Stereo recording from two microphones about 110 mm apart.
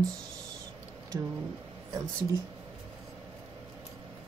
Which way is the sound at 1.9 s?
30° right (ahead or behind).